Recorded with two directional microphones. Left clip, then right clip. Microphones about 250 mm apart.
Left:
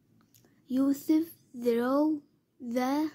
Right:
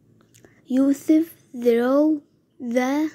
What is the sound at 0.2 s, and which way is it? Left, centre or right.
A woman's voice, centre.